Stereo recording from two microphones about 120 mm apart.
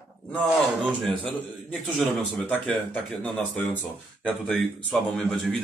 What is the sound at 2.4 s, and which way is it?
A man's voice, 15° left (ahead or behind).